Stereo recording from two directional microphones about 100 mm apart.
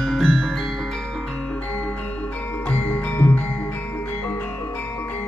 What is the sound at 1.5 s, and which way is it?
Music, 15° left (ahead or behind).